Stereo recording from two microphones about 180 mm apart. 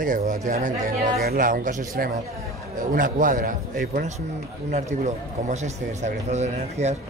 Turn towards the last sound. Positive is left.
turn(degrees=-40)  # may be behind; listen again after turning